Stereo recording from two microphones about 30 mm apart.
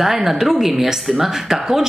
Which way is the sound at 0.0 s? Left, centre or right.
Centre.